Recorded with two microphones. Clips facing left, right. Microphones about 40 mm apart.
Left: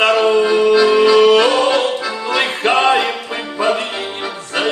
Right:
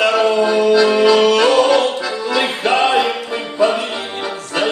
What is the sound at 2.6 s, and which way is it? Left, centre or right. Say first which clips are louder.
Music: left 1 dB; left.